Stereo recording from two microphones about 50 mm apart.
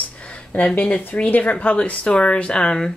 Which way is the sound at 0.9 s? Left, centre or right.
Centre.